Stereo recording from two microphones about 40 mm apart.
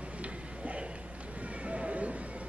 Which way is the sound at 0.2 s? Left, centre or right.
Right.